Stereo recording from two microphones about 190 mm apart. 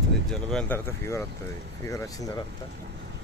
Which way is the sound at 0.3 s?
5° left (ahead or behind).